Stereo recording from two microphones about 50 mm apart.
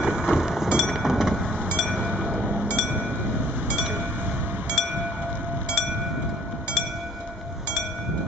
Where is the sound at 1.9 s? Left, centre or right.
Right.